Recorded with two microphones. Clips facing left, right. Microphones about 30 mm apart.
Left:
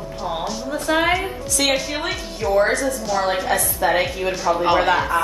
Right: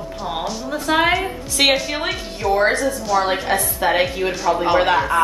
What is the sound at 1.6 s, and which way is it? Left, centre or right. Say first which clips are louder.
A woman's voice: right 4 dB; right.